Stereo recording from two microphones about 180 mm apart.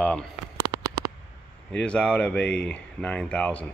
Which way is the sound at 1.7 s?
5° left (ahead or behind).